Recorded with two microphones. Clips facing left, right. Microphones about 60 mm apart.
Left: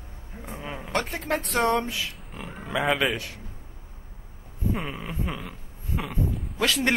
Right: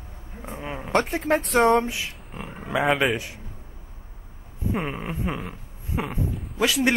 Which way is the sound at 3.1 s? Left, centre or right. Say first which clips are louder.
Right 3 dB; centre.